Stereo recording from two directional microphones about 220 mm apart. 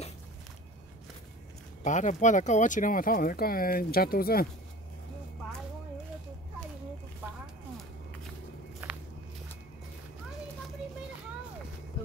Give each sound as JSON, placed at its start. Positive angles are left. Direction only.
{"t": 1.8, "sound": "speech", "side_deg": 35}
{"t": 8.8, "sound": "walk", "side_deg": -10}